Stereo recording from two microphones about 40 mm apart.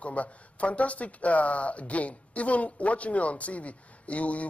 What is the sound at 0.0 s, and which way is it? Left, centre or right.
Speech, left.